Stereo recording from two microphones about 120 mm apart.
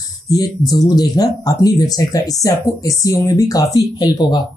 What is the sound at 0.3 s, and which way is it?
Speech, 30° left (ahead or behind).